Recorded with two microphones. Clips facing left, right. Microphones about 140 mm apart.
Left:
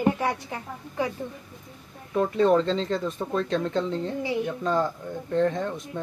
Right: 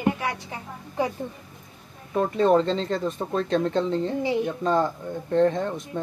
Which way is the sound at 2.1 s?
20° right (ahead or behind).